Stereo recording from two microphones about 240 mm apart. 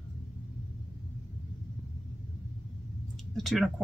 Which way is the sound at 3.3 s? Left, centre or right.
Centre.